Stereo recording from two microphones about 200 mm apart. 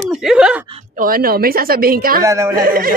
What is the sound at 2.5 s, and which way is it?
Speech, 45° right (ahead or behind).